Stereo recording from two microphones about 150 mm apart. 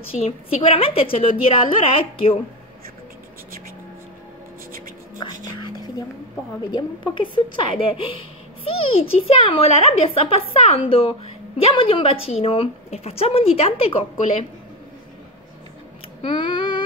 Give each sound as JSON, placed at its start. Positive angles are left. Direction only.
{"t": 0.2, "sound": "a child's voice", "side_deg": 40}
{"t": 5.2, "sound": "a child's voice", "side_deg": 30}
{"t": 6.7, "sound": "a child's voice", "side_deg": 35}
{"t": 16.2, "sound": "a sound", "side_deg": 30}